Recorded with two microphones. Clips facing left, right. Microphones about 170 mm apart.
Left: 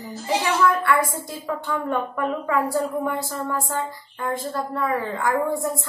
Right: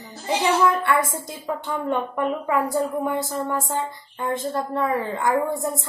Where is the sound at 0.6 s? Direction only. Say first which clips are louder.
Even; 20° right (ahead or behind).